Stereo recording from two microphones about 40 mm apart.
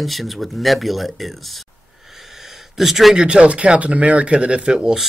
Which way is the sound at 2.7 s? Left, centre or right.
Centre.